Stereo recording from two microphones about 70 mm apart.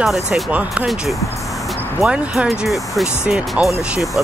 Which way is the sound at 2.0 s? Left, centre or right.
Centre.